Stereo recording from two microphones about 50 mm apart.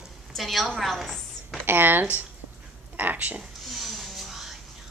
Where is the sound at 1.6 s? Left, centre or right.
Right.